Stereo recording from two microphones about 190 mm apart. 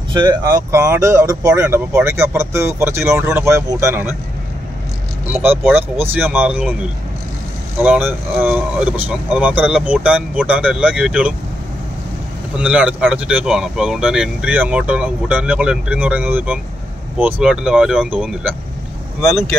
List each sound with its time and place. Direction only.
0.1 s speech: 20° right (ahead or behind)
5.3 s speech: 10° right (ahead or behind)
7.8 s speech: 10° right (ahead or behind)
12.5 s speech: 5° right (ahead or behind)